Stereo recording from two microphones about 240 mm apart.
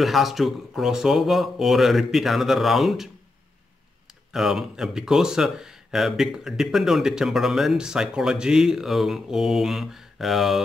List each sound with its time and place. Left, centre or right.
0.0 s speech: centre
4.3 s speech: centre